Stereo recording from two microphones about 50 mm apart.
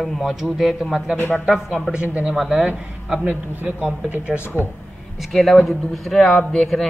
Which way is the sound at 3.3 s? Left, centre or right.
Right.